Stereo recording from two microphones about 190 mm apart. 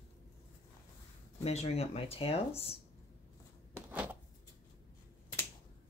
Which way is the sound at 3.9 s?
5° right (ahead or behind).